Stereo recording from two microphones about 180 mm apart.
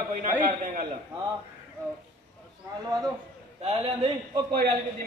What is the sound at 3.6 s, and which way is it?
Speech, 35° right (ahead or behind).